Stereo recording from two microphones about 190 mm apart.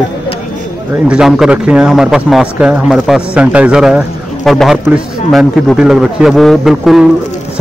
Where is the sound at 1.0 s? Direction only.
5° right (ahead or behind).